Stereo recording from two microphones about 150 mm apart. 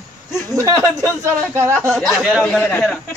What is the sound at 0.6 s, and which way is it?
Speech, 20° right (ahead or behind).